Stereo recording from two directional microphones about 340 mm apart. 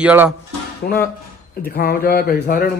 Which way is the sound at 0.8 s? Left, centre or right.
Left.